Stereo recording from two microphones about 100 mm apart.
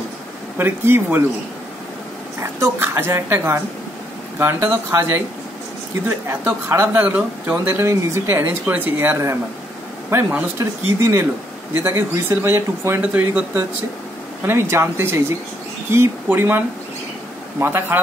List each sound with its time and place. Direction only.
0.6 s speech: 20° right (ahead or behind)
2.4 s speech: 30° right (ahead or behind)
6.2 s speech: 25° right (ahead or behind)